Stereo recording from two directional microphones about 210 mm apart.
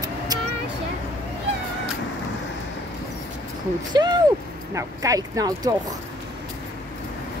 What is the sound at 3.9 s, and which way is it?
Speech, 20° right (ahead or behind).